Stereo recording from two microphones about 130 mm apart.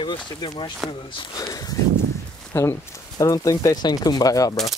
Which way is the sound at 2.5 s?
20° left (ahead or behind).